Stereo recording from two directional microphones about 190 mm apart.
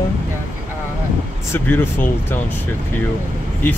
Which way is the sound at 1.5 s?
10° left (ahead or behind).